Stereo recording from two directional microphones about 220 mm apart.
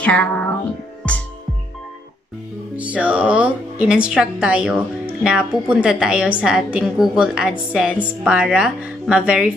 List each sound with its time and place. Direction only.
0.0 s music: 5° left (ahead or behind)
2.7 s speech: 5° right (ahead or behind)